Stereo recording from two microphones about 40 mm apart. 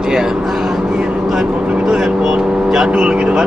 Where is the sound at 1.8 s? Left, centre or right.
Centre.